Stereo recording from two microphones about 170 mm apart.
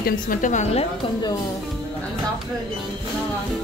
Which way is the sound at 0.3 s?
50° left (ahead or behind).